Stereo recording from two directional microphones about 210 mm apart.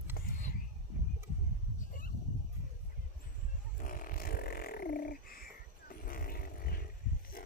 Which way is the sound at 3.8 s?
40° left (ahead or behind).